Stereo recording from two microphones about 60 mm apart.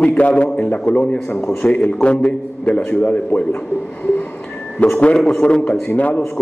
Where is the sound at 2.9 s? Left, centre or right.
Left.